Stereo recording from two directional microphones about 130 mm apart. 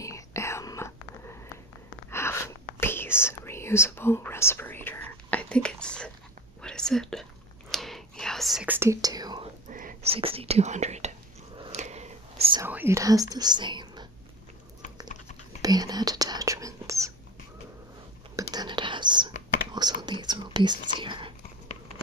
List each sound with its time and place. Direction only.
0.0 s whispering: 25° left (ahead or behind)
2.0 s gasp: 20° left (ahead or behind)
2.8 s whispering: 15° left (ahead or behind); by 8.6 s centre (ahead or behind)
8.6 s whispering: 20° right (ahead or behind)
9.7 s whispering: 90° right
10.0 s speech: 45° right (ahead or behind); by 11.1 s 60° right (ahead or behind)
11.7 s a sound: 60° right (ahead or behind)
12.6 s speech: 15° right (ahead or behind); by 14.0 s 35° right (ahead or behind)
15.6 s whispering: 30° right (ahead or behind)
18.3 s whispering: 30° right (ahead or behind)